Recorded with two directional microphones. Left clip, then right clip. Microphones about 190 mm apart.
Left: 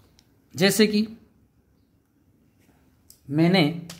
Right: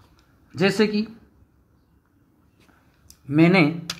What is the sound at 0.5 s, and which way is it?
Speech, 35° left (ahead or behind).